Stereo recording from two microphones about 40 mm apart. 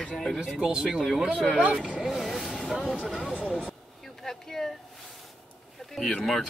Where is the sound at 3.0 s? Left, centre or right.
Centre.